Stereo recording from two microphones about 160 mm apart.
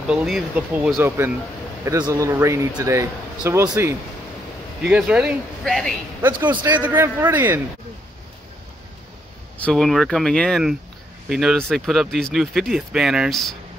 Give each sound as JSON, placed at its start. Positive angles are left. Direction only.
{"t": 0.0, "sound": "speech", "side_deg": -5}
{"t": 4.8, "sound": "speech", "side_deg": -5}
{"t": 6.6, "sound": "speech", "side_deg": -10}
{"t": 9.6, "sound": "speech", "side_deg": 5}